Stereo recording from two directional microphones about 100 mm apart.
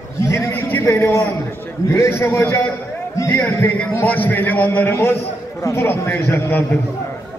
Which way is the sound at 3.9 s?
20° left (ahead or behind).